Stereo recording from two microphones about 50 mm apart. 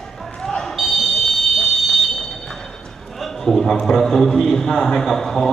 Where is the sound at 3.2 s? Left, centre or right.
Centre.